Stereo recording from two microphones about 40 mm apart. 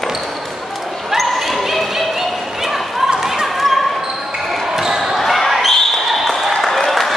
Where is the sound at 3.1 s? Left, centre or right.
Centre.